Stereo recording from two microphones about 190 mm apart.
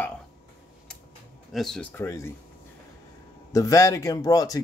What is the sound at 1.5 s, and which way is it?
Speech, centre (ahead or behind).